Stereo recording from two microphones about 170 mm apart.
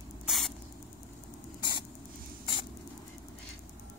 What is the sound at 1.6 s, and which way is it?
Rodents, 25° left (ahead or behind).